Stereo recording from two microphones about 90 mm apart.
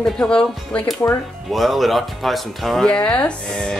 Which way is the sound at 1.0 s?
35° left (ahead or behind).